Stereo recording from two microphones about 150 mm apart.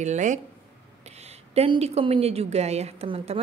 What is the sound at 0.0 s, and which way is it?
A woman's voice, 55° right (ahead or behind).